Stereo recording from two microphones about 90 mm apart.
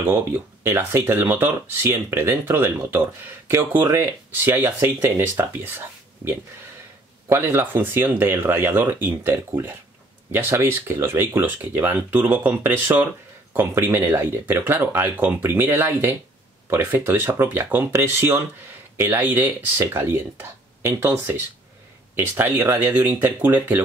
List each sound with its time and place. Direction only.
0.0 s speech: 30° right (ahead or behind)
22.7 s speech: 20° right (ahead or behind)